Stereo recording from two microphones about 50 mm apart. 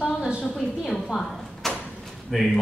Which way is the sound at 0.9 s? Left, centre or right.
Centre.